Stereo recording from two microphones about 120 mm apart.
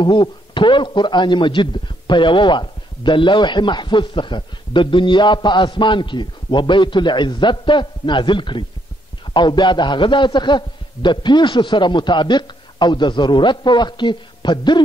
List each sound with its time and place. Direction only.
0.0 s speech: 40° left (ahead or behind)